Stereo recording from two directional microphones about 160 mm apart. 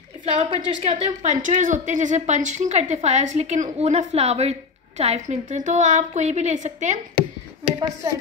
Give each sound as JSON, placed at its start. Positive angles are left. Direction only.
{"t": 0.2, "sound": "a woman's voice", "side_deg": -40}